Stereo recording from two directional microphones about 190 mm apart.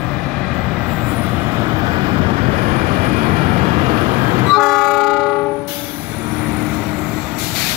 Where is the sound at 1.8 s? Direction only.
25° right (ahead or behind).